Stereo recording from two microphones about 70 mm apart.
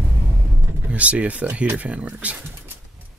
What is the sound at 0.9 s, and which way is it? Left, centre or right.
Speech, centre.